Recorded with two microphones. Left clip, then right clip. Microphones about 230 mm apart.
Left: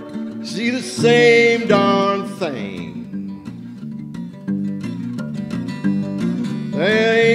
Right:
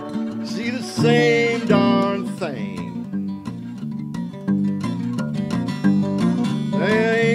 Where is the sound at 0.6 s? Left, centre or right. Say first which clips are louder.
Left 4 dB; left.